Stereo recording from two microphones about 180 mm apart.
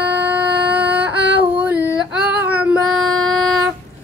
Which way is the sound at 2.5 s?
10° right (ahead or behind).